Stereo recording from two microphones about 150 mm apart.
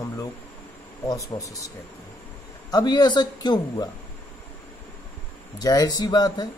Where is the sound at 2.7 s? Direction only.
25° left (ahead or behind).